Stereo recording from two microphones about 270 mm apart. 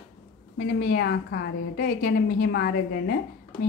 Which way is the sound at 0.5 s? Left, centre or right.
Left.